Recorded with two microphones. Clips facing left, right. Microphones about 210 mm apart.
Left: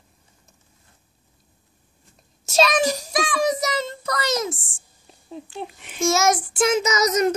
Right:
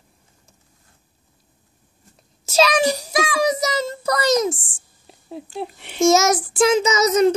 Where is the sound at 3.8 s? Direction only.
40° right (ahead or behind).